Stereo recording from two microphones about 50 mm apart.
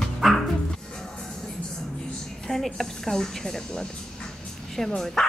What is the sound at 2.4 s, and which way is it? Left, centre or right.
A woman's voice, centre.